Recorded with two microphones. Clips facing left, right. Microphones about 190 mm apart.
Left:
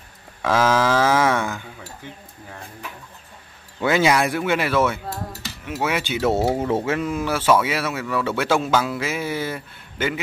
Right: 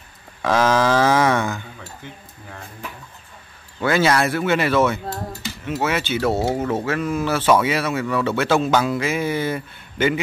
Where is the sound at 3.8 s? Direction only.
15° left (ahead or behind).